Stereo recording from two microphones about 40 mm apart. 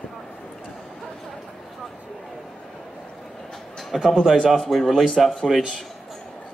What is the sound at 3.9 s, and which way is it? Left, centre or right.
Speech, centre.